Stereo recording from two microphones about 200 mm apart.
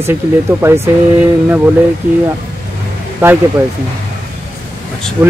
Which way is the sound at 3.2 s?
10° right (ahead or behind).